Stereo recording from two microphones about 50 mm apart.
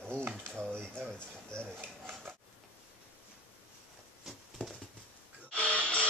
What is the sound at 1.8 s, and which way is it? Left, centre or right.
Rub, right.